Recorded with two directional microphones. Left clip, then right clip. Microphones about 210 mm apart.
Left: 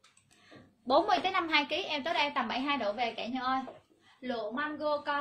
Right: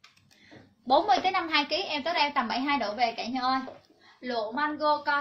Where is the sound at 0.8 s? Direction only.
25° left (ahead or behind).